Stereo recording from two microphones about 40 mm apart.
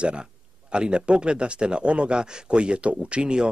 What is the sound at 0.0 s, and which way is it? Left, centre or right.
Speech, right.